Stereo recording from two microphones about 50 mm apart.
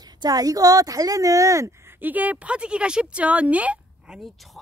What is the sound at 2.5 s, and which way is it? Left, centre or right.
Speech, right.